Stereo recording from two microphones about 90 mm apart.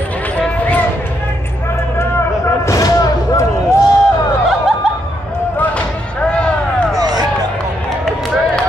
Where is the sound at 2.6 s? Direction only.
40° left (ahead or behind).